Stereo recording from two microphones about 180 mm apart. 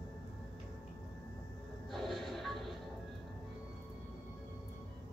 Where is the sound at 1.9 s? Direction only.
Centre (ahead or behind).